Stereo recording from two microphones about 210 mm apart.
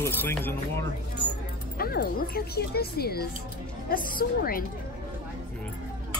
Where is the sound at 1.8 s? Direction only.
45° left (ahead or behind).